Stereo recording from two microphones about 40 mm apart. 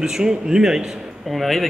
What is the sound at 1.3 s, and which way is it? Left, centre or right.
Speech, centre.